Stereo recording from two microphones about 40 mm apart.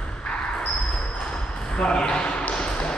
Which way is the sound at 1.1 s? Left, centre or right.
Left.